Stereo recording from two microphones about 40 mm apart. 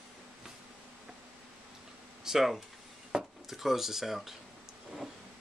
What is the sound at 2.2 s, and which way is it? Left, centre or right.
Speech, centre.